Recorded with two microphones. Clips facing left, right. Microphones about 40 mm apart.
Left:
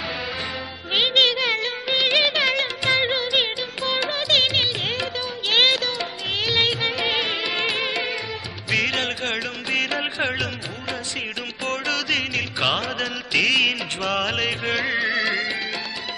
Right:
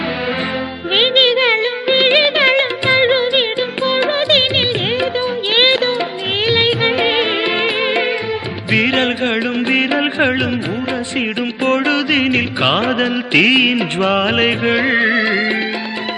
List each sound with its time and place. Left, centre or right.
0.9 s music: right
6.4 s music of bollywood: right
8.7 s music: right
11.6 s music: right